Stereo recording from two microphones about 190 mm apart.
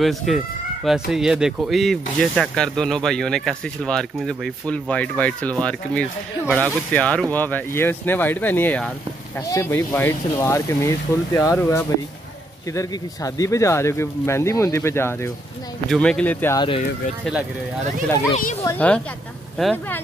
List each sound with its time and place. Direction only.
0.0 s speech: centre (ahead or behind)
16.5 s speech: 25° left (ahead or behind)
18.3 s a child's voice: 40° left (ahead or behind)
18.6 s speech: 10° left (ahead or behind)